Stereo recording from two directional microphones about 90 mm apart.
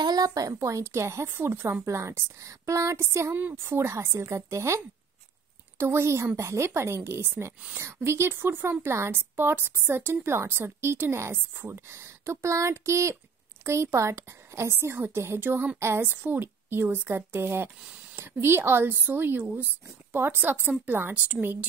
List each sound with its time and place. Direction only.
0.0 s speech: 45° right (ahead or behind)
3.3 s a woman's voice: 20° right (ahead or behind)
3.6 s a woman's voice: 30° right (ahead or behind)